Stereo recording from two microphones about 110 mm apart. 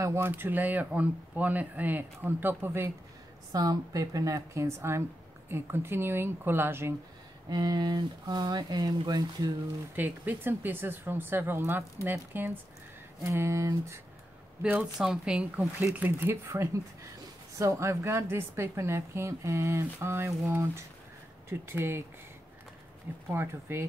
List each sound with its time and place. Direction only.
0.0 s speech: 25° right (ahead or behind)
3.5 s a woman's voice: 35° right (ahead or behind)
7.4 s speech: 40° right (ahead or behind)
9.9 s a woman's voice: 15° right (ahead or behind)
14.6 s a woman's voice: 10° right (ahead or behind)
23.3 s a woman's voice: 25° right (ahead or behind)